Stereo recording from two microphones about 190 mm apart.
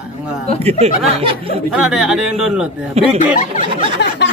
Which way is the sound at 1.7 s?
Centre (ahead or behind).